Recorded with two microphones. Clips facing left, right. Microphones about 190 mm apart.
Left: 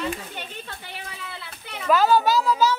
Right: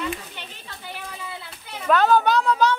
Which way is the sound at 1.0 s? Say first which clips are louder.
Right 2 dB; 70° left (ahead or behind).